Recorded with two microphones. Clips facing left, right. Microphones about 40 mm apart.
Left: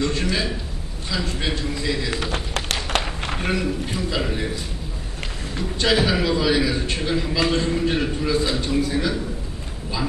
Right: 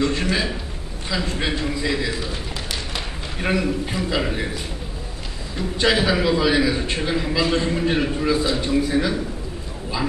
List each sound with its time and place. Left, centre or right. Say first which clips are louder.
0.0 s a sound: right 2 dB; centre
1.1 s a man's voice: right 2 dB; centre
2.1 s tap: left 3 dB; left
3.4 s a man's voice: right 4 dB; centre
5.8 s a man's voice: right 1 dB; centre